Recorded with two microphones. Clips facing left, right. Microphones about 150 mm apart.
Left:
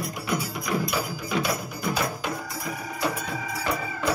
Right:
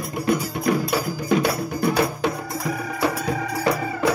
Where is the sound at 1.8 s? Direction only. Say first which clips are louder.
Right 7 dB; 65° right (ahead or behind).